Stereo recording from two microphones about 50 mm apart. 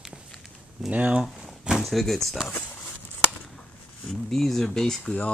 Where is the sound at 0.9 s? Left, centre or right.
Right.